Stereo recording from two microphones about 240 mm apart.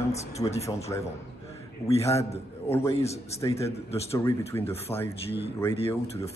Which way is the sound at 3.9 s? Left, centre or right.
Left.